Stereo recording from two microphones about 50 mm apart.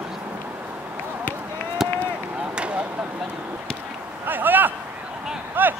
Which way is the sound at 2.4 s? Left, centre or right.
Right.